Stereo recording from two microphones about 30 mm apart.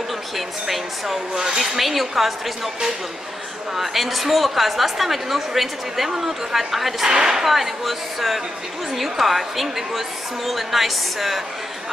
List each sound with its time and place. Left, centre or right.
0.7 s a woman's voice: centre
3.7 s a woman's voice: centre
7.1 s speech: right
7.4 s a woman's voice: centre